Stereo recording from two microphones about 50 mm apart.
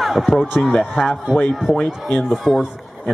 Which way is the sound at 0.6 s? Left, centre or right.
Centre.